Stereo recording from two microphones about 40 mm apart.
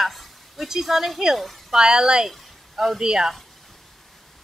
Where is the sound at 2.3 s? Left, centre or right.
Centre.